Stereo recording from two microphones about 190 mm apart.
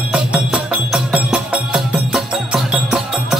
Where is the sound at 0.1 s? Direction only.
5° right (ahead or behind).